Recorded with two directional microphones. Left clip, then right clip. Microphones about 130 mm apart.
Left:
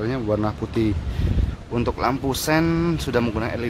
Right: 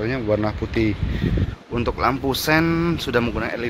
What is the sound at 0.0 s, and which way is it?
Speech, 15° left (ahead or behind).